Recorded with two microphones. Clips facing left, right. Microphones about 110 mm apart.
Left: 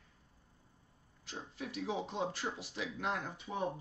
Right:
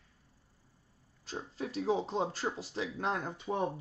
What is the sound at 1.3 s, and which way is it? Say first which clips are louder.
A man's voice: right 5 dB; 35° right (ahead or behind).